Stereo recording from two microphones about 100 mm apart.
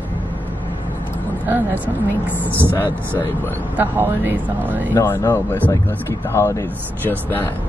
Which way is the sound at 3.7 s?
20° right (ahead or behind).